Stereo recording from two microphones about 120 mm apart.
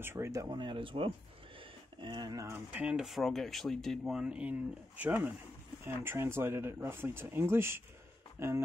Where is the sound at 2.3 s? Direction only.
25° right (ahead or behind).